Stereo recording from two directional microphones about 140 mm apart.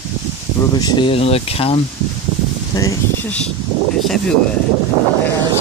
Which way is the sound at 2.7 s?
25° left (ahead or behind).